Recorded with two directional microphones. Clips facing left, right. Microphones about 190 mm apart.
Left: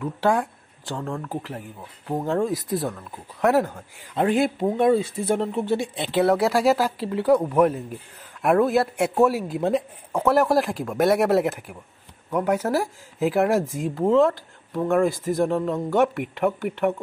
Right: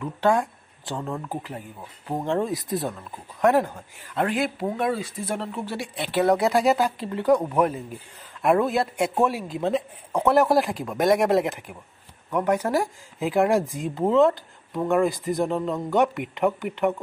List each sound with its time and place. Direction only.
0.0 s speech: 10° left (ahead or behind)
4.2 s speech: 25° left (ahead or behind)
6.3 s speech: centre (ahead or behind)